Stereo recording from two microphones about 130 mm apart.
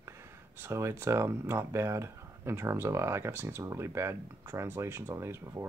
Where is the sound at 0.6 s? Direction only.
20° right (ahead or behind).